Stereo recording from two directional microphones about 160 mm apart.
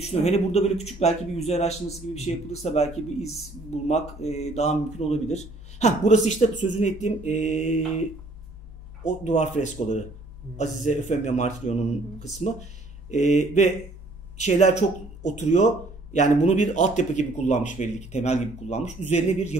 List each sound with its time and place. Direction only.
0.0 s speech: 40° left (ahead or behind)
9.0 s speech: 45° left (ahead or behind)